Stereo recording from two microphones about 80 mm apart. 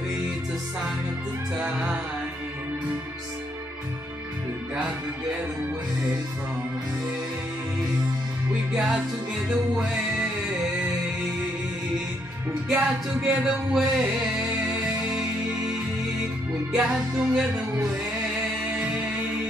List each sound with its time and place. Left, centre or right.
1.6 s music: centre
8.7 s music: centre
12.7 s music: centre
13.5 s a sound: centre
14.6 s music: centre
16.7 s music: centre